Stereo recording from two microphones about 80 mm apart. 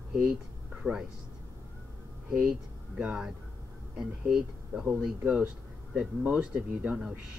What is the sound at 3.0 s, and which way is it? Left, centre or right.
Speech, centre.